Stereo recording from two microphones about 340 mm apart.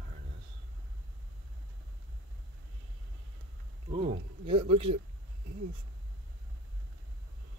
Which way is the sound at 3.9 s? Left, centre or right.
Centre.